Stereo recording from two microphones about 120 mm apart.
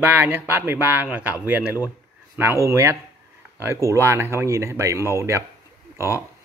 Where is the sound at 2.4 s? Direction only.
20° right (ahead or behind).